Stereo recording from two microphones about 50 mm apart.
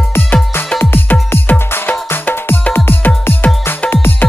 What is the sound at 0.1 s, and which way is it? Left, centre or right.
Music, left.